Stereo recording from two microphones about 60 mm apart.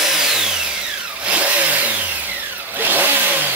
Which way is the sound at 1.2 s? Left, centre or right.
Right.